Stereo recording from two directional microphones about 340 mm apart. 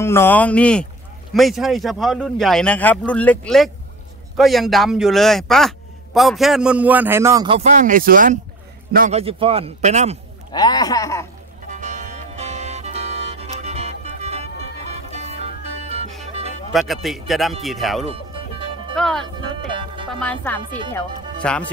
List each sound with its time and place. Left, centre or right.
0.0 s a man's voice: centre
10.5 s a man's voice: centre
11.6 s music: right
16.7 s a man's voice: centre
18.0 s music: centre
18.9 s a man's voice: centre
19.7 s music: centre
20.1 s a man's voice: centre